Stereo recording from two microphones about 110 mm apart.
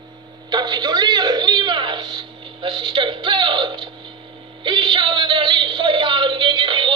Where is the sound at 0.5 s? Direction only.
40° right (ahead or behind).